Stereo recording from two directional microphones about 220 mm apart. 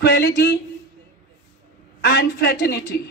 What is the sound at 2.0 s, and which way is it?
Speech, 45° left (ahead or behind).